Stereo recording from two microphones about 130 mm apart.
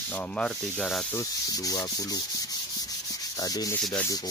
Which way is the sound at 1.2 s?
25° left (ahead or behind).